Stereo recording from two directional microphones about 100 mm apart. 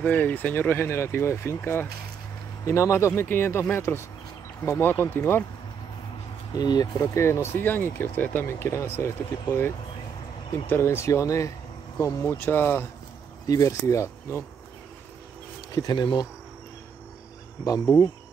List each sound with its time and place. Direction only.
0.0 s speech: 15° left (ahead or behind)
6.5 s speech: 40° left (ahead or behind)
7.2 s speech: 25° left (ahead or behind)
13.5 s speech: 35° left (ahead or behind)
15.7 s speech: 40° left (ahead or behind)